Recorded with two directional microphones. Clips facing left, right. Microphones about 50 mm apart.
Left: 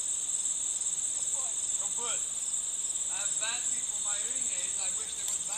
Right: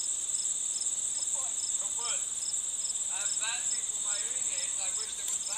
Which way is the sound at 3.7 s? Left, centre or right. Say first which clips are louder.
Even; centre.